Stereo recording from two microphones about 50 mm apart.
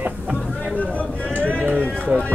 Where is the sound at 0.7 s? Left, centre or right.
Left.